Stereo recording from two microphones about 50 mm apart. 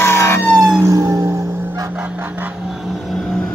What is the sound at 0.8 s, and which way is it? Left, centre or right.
Vehicle, right.